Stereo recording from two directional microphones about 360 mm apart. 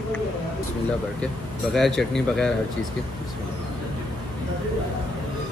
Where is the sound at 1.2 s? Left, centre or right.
Centre.